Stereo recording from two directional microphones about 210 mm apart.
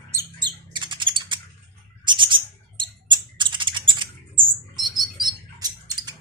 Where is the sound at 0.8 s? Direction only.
20° right (ahead or behind).